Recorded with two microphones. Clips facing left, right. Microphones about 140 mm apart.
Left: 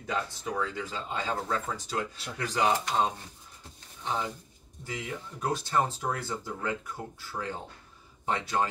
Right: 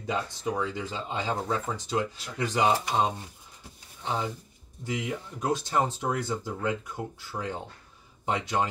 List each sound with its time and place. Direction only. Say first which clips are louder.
0.0 s speech: right 3 dB; 20° right (ahead or behind)
8.3 s speech: right 1 dB; 15° right (ahead or behind)